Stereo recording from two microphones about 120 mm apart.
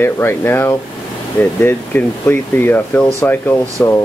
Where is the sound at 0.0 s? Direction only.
20° left (ahead or behind).